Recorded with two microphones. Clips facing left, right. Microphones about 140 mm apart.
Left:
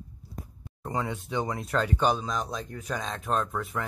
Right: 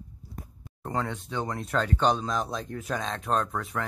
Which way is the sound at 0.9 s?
10° left (ahead or behind).